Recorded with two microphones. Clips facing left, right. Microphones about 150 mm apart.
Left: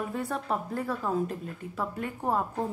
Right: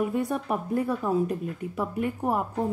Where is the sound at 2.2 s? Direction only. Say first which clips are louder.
Left 1 dB; 5° right (ahead or behind).